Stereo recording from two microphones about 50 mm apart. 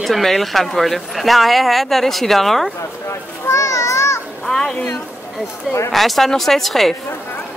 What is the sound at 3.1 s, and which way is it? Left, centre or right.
Children playing, left.